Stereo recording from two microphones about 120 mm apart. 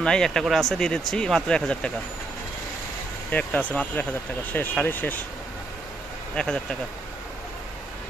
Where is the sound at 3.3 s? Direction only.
10° left (ahead or behind).